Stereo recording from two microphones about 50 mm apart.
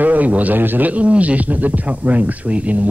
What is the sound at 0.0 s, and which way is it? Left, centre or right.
A man's voice, right.